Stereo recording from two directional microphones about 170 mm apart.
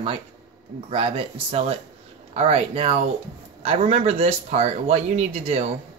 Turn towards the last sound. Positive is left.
turn(degrees=-40)  # may be behind; listen again after turning